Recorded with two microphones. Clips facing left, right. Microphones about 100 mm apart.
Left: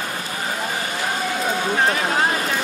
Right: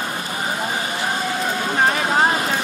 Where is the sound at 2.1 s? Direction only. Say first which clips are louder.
Right 3 dB; 25° right (ahead or behind).